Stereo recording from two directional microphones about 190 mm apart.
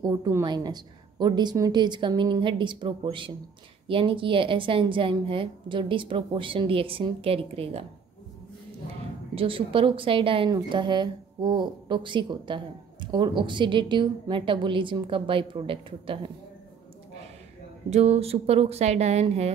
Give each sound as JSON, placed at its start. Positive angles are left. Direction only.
{"t": 0.0, "sound": "a woman's voice", "side_deg": -20}
{"t": 9.3, "sound": "a woman's voice", "side_deg": -30}
{"t": 17.8, "sound": "speech", "side_deg": -35}